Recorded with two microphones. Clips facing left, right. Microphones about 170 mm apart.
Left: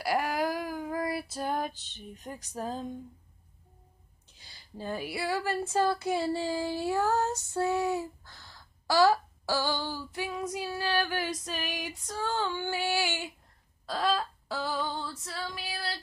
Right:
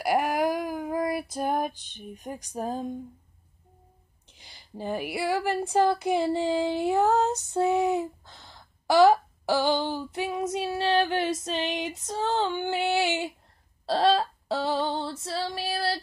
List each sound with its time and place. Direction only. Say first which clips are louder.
0.0 s female singing: right 4 dB; 15° right (ahead or behind)
4.4 s child singing: right 4 dB; 15° right (ahead or behind); by 16.0 s 35° right (ahead or behind)